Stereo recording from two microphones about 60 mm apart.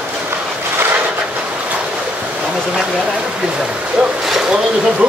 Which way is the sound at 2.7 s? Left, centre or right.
Centre.